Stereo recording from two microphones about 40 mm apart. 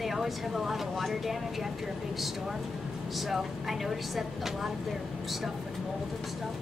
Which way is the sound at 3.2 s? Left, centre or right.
Centre.